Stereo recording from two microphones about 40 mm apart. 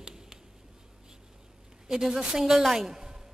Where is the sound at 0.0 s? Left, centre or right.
Centre.